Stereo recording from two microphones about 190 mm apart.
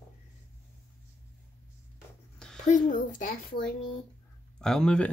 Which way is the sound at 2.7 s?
40° left (ahead or behind).